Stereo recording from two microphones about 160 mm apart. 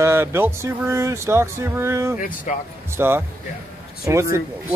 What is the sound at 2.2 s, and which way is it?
Speech, 55° left (ahead or behind).